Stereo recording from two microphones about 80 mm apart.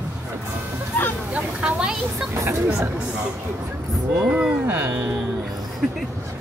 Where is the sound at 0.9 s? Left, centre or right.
Left.